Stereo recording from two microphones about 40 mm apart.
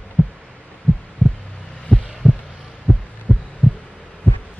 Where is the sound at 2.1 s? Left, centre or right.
Centre.